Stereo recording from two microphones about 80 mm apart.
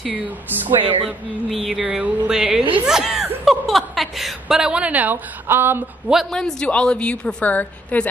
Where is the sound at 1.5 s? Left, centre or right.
Centre.